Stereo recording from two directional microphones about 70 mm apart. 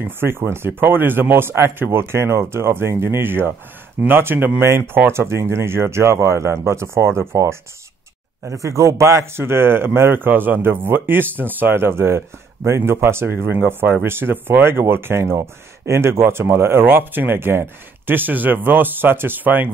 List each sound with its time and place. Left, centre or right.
0.0 s speech: right
8.6 s speech: right